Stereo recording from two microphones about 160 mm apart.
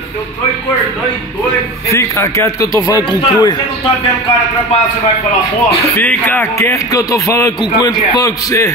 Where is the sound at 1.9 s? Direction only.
20° left (ahead or behind).